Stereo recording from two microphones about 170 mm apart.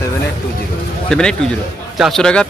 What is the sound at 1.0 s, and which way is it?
Speech, 5° left (ahead or behind).